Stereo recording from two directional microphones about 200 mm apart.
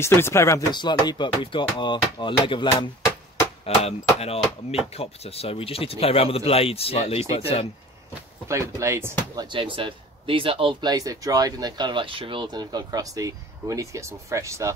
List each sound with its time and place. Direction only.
0.0 s speech: 10° left (ahead or behind); by 7.6 s 30° left (ahead or behind)
8.1 s speech: 15° right (ahead or behind)